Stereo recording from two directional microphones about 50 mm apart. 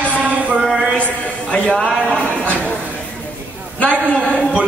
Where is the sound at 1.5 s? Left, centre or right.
Centre.